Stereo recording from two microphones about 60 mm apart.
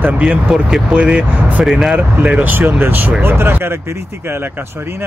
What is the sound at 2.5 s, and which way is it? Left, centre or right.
Speech, right.